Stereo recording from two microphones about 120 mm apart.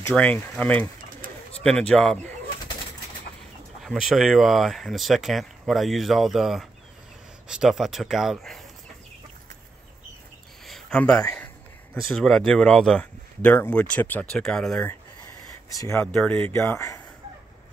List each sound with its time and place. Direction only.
0.1 s bird: 10° left (ahead or behind)
1.7 s speech: 5° left (ahead or behind)
3.8 s speech: centre (ahead or behind)
10.6 s a sound: 5° left (ahead or behind)
11.3 s speech: 10° left (ahead or behind)
16.0 s speech: 15° left (ahead or behind)